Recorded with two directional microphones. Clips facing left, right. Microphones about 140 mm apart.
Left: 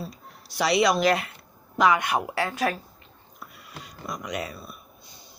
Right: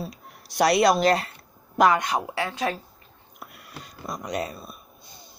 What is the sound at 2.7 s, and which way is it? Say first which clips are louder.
Speech: even; 20° right (ahead or behind).